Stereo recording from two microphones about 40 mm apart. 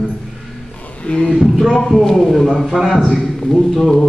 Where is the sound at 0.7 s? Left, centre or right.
Left.